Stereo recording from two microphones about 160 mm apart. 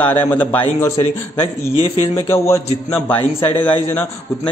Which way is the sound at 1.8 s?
35° left (ahead or behind).